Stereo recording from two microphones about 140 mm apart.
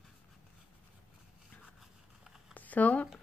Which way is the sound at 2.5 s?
10° left (ahead or behind).